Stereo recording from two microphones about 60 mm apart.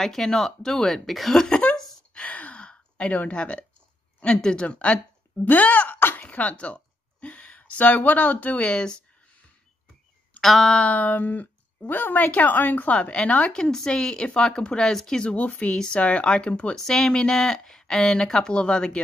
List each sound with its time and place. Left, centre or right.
0.0 s speech: centre
2.1 s gasp: left
4.2 s speech: centre
8.6 s speech: centre
10.4 s a sound: centre
10.8 s speech: left